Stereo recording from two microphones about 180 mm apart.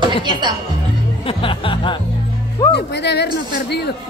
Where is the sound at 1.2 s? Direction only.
30° left (ahead or behind).